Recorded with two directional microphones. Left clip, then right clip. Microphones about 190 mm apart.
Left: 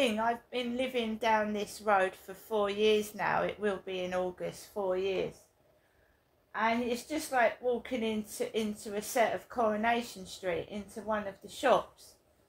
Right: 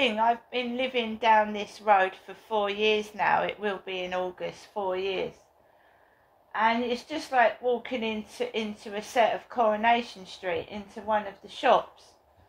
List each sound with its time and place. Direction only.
0.2 s a woman's voice: 40° left (ahead or behind)
6.5 s a woman's voice: 35° left (ahead or behind)